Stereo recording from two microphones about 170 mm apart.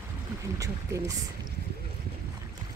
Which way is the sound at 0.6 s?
20° right (ahead or behind).